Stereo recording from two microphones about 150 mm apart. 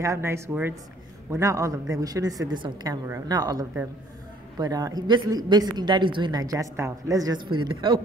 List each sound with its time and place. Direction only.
0.0 s a woman's voice: 20° right (ahead or behind)